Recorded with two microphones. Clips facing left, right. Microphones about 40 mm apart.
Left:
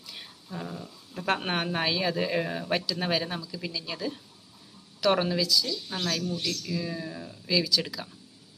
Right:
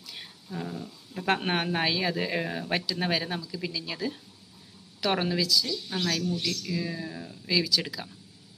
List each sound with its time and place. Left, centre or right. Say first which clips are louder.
0.0 s speech: right 1 dB; centre